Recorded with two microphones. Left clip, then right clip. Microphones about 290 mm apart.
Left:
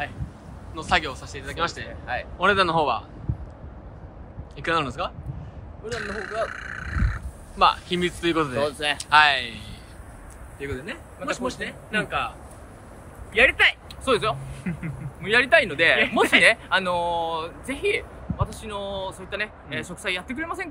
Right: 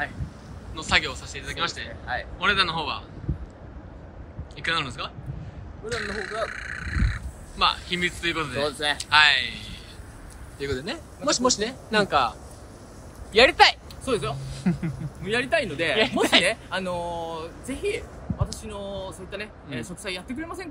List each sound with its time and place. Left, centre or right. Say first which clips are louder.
0.7 s speech: even; centre
4.6 s speech: left 2 dB; centre
14.0 s speech: left 5 dB; centre
14.6 s speech: right 5 dB; centre
15.2 s speech: left 6 dB; centre